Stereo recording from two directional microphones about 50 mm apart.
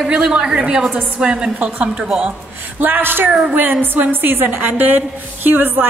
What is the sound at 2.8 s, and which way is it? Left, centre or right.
Speech, right.